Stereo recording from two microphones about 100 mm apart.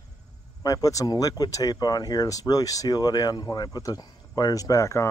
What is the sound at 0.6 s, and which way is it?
Speech, 35° left (ahead or behind).